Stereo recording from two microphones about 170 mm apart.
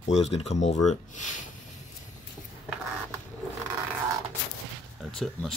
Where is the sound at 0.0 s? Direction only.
40° left (ahead or behind).